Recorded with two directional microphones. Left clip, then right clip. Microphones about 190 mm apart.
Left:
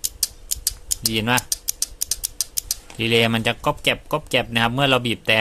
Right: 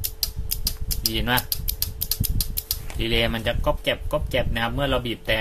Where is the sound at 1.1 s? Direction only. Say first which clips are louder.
Left 3 dB; 30° left (ahead or behind).